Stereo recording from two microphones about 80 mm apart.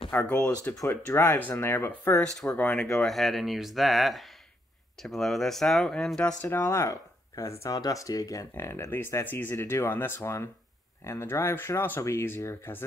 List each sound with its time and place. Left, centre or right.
0.1 s speech: left
2.5 s speech: centre
6.5 s speech: left
7.7 s speech: left